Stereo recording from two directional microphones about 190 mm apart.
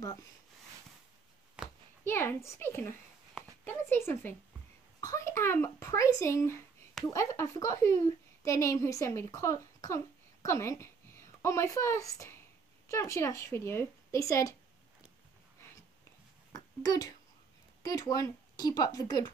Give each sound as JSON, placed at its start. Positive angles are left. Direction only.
{"t": 2.0, "sound": "a woman's voice", "side_deg": 10}
{"t": 16.5, "sound": "a child's voice", "side_deg": 20}